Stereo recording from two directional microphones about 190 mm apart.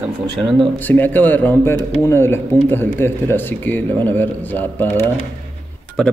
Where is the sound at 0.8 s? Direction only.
10° left (ahead or behind).